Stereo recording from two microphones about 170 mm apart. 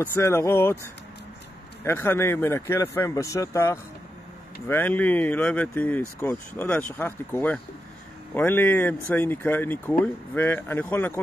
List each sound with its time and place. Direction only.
0.0 s speech: 15° left (ahead or behind)
1.9 s speech: 15° left (ahead or behind)